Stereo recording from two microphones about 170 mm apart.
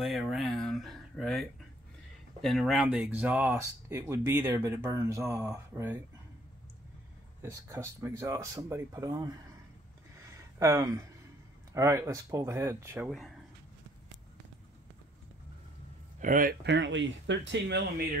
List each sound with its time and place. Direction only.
0.0 s speech: centre (ahead or behind)
2.4 s speech: centre (ahead or behind); by 5.9 s 15° right (ahead or behind)
7.4 s speech: 15° right (ahead or behind)
10.6 s speech: 20° right (ahead or behind)
16.2 s speech: 55° right (ahead or behind)
16.6 s speech: 90° right